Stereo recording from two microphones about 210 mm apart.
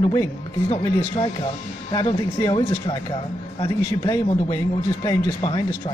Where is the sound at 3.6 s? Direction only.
20° left (ahead or behind).